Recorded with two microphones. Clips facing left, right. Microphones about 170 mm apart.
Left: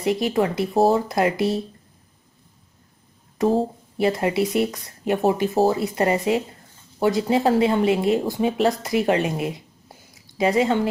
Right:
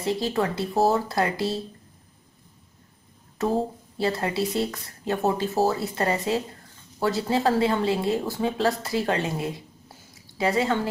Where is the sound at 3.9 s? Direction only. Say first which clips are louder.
Left 5 dB; 15° left (ahead or behind).